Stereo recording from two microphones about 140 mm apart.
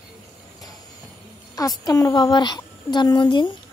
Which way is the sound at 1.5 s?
25° left (ahead or behind).